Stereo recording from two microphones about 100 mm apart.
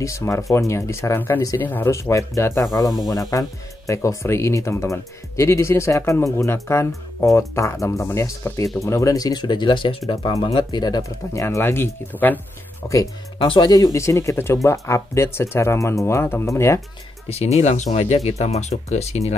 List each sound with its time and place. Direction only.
0.0 s speech: 30° left (ahead or behind)
2.6 s speech: 40° left (ahead or behind); by 10.3 s 60° left (ahead or behind)
10.6 s speech: 45° left (ahead or behind); by 12.4 s 20° left (ahead or behind)
12.8 s speech: 35° left (ahead or behind)
13.4 s speech: 60° left (ahead or behind)
13.7 s speech: 40° left (ahead or behind)
17.3 s speech: 90° left